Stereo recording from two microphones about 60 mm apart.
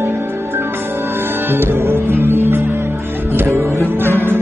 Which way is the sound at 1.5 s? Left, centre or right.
Right.